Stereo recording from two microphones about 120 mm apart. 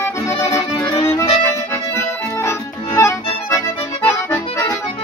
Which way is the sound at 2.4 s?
25° left (ahead or behind).